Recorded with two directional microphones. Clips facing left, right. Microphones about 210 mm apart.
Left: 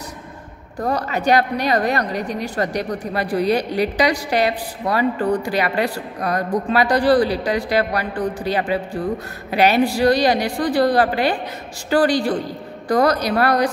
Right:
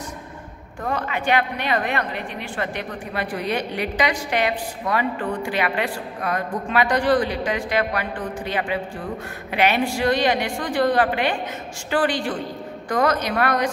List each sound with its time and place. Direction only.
0.8 s a woman's voice: 40° left (ahead or behind)